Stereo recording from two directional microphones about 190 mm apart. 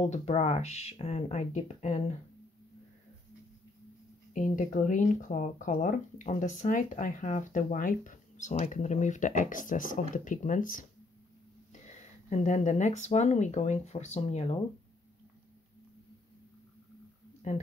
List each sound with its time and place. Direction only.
0.1 s speech: 35° left (ahead or behind)
4.3 s speech: 45° left (ahead or behind)
17.4 s speech: 40° left (ahead or behind)